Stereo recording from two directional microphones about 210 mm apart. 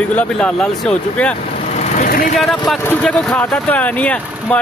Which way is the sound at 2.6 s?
5° left (ahead or behind).